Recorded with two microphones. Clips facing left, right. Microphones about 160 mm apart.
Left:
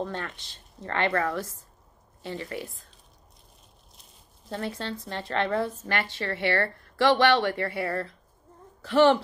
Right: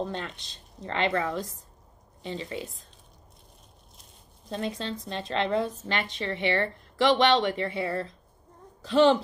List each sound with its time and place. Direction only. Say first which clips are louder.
0.0 s a woman's voice: even; 20° right (ahead or behind)
4.5 s a woman's voice: right 1 dB; 20° right (ahead or behind)